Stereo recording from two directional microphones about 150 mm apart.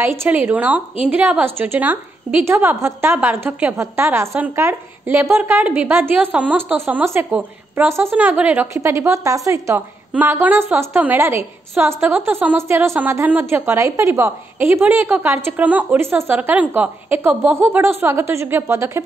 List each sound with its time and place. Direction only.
0.0 s a woman's voice: 15° right (ahead or behind)